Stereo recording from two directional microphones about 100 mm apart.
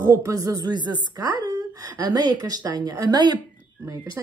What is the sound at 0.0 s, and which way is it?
A woman's voice, 30° right (ahead or behind).